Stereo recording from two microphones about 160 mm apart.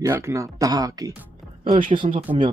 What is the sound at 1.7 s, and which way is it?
Speech, 55° right (ahead or behind).